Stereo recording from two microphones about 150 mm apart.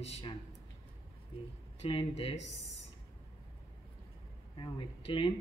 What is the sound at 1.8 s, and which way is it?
Speech, 40° left (ahead or behind).